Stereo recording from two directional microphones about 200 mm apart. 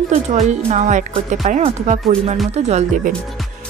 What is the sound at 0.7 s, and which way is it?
Speech, 35° right (ahead or behind).